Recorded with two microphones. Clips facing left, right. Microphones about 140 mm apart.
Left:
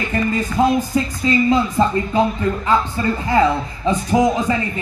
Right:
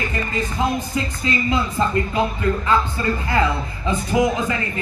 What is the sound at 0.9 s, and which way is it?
Speech, 40° left (ahead or behind).